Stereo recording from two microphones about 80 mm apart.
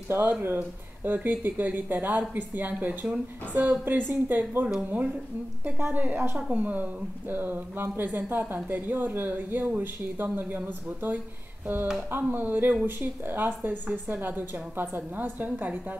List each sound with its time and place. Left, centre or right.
0.1 s a woman's voice: right
5.8 s a woman's voice: right
11.6 s a sound: right
12.1 s a woman's voice: right